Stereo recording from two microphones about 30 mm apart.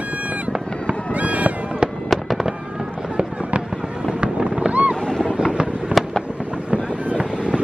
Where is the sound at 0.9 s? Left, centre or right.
Right.